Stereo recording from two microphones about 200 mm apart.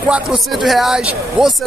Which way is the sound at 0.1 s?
Centre (ahead or behind).